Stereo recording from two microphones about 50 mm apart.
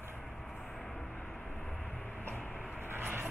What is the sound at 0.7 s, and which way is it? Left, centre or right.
Vehicle, centre.